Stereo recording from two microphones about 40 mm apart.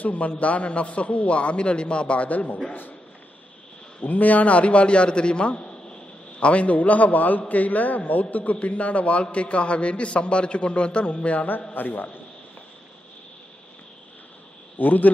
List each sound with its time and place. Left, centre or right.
0.0 s a man's voice: left
4.0 s a man's voice: left
11.7 s a man's voice: left
14.8 s a man's voice: left